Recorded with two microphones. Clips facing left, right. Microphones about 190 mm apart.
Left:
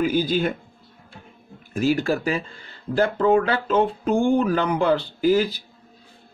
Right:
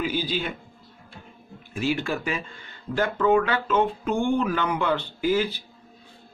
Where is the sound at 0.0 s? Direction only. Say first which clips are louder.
Left 6 dB; 45° left (ahead or behind).